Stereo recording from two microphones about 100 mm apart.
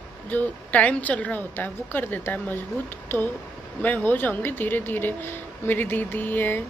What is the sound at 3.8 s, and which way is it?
A woman's voice, 20° left (ahead or behind).